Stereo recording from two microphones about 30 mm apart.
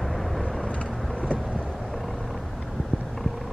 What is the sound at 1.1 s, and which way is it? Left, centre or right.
Vehicle, left.